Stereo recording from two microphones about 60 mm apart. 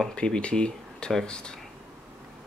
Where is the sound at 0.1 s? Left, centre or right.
Centre.